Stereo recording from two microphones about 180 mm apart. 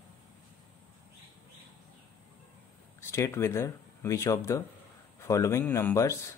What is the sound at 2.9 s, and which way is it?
Speech, 15° left (ahead or behind).